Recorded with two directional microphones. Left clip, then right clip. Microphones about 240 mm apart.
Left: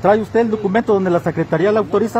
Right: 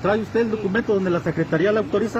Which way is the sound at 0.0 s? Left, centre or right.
Left.